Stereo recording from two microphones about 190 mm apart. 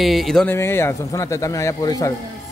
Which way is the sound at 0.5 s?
15° left (ahead or behind).